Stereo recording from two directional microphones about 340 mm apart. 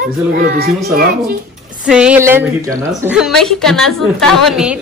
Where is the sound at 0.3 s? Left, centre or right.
Right.